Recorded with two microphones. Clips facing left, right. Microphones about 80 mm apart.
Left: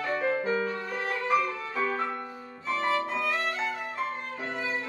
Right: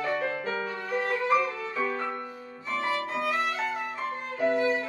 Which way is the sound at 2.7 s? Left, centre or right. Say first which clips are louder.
Left 1 dB; centre.